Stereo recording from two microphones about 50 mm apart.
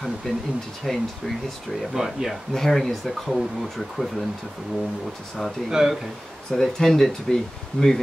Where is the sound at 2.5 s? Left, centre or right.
Centre.